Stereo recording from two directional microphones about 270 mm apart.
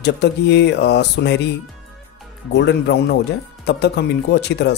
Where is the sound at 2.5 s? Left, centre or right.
Left.